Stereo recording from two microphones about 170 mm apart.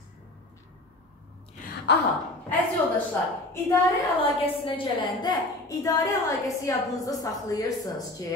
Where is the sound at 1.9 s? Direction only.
85° left.